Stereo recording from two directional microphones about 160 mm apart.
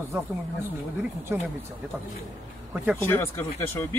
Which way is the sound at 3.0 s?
15° left (ahead or behind).